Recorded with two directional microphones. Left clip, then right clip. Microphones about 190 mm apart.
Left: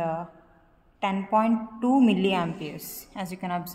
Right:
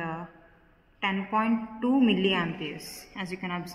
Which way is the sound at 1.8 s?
70° left (ahead or behind).